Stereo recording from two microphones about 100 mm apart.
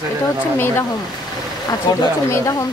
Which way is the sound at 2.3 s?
30° left (ahead or behind).